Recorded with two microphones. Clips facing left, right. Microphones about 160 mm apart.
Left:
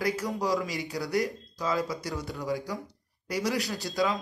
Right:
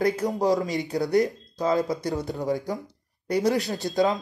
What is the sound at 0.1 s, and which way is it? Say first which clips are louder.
A man's voice: right 6 dB; 45° right (ahead or behind).